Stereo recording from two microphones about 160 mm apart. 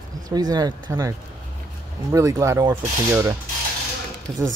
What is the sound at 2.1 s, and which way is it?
Speech, 20° right (ahead or behind).